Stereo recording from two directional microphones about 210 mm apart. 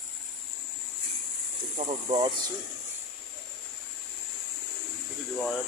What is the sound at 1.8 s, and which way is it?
Speech, 30° right (ahead or behind).